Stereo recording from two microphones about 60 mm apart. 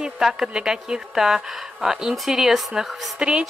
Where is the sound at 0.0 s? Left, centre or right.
Centre.